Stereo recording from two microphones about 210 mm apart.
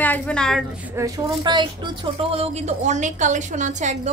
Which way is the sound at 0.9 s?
20° right (ahead or behind).